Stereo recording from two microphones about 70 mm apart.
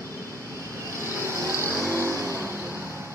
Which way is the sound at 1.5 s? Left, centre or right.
Left.